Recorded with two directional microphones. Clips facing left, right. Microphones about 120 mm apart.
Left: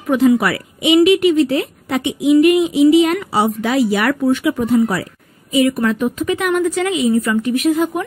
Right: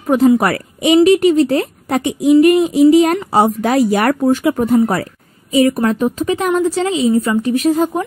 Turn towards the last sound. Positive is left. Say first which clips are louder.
# right 1 dB
turn(degrees=-35)  # may be behind; listen again after turning